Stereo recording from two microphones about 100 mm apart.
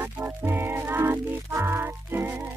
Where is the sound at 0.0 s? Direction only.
20° right (ahead or behind).